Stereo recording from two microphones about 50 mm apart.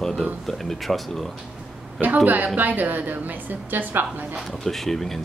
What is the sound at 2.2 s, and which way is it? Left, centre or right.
A woman's voice, right.